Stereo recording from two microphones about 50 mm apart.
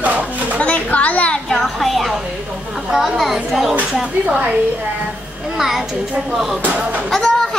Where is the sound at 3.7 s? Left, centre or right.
Right.